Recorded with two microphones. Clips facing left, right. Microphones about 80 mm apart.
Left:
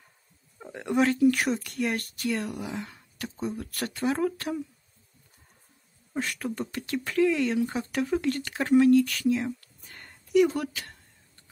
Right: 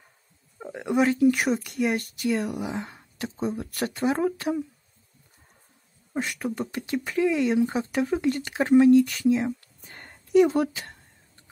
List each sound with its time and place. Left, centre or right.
0.6 s speech: centre
6.1 s speech: centre